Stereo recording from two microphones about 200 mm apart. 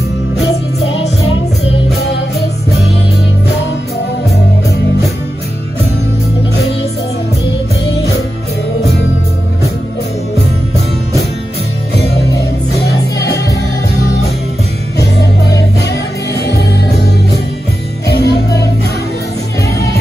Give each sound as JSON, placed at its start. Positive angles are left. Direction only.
{"t": 0.8, "sound": "music", "side_deg": 30}
{"t": 16.4, "sound": "music", "side_deg": 55}